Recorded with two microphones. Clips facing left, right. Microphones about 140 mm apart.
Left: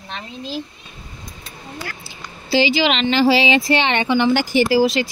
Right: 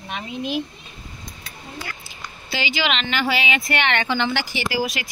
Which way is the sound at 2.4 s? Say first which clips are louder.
Left 8 dB; 35° left (ahead or behind).